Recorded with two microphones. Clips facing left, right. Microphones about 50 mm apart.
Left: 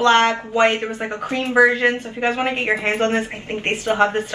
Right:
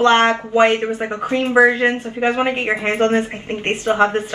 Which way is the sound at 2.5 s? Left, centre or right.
Centre.